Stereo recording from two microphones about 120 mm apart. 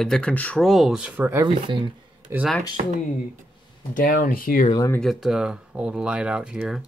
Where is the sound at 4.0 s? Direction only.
90° left.